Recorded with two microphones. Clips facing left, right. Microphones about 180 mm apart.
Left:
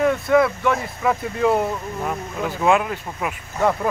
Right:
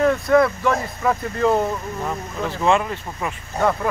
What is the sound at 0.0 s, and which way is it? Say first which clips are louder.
Speech: right 1 dB; 5° left (ahead or behind).